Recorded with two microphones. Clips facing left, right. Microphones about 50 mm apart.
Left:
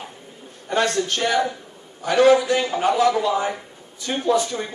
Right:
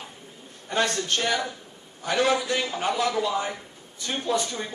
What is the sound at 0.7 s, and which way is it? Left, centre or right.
Speech, left.